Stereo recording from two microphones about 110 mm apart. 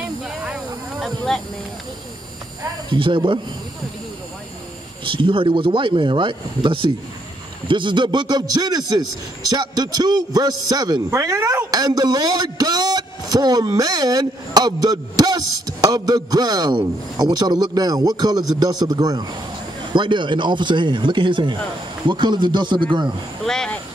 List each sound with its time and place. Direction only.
0.9 s a sound: centre (ahead or behind)
2.9 s speech: 45° right (ahead or behind)
5.0 s speech: 50° right (ahead or behind)
11.1 s a sound: 25° right (ahead or behind)
11.7 s speech: 35° right (ahead or behind)
23.4 s speech: 5° left (ahead or behind)